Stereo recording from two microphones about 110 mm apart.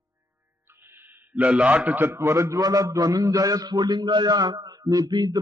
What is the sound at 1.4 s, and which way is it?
A man's voice, 10° right (ahead or behind).